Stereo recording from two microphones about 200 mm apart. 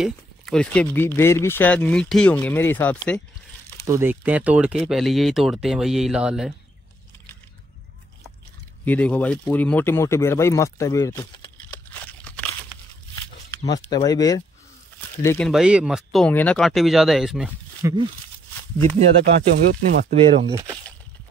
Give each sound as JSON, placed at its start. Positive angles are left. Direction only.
{"t": 0.0, "sound": "speech", "side_deg": 5}
{"t": 3.8, "sound": "speech", "side_deg": -15}
{"t": 8.8, "sound": "speech", "side_deg": 5}
{"t": 11.9, "sound": "a sound", "side_deg": 5}
{"t": 13.7, "sound": "speech", "side_deg": 20}
{"t": 17.8, "sound": "speech", "side_deg": -15}
{"t": 19.9, "sound": "speech", "side_deg": -30}